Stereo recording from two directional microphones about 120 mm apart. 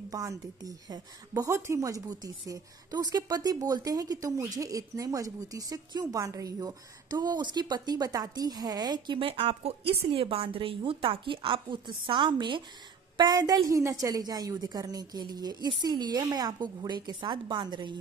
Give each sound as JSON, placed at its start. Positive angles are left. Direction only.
{"t": 0.1, "sound": "a woman's voice", "side_deg": -30}